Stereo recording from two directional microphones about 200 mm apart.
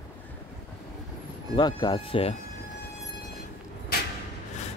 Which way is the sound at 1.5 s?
20° left (ahead or behind).